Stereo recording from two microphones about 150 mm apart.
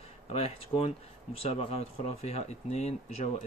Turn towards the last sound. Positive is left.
turn(degrees=45)  # may be behind; listen again after turning